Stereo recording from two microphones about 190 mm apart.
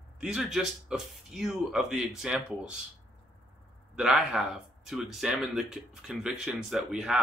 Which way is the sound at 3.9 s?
5° right (ahead or behind).